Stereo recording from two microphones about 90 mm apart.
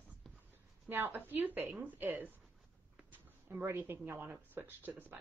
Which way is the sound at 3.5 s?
25° right (ahead or behind).